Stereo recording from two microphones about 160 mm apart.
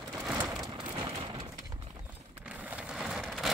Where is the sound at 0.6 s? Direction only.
30° right (ahead or behind).